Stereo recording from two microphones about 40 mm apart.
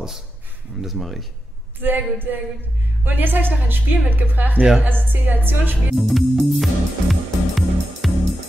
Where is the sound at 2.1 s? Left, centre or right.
Right.